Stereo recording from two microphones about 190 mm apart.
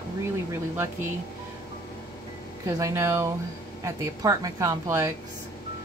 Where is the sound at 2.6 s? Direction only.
15° right (ahead or behind).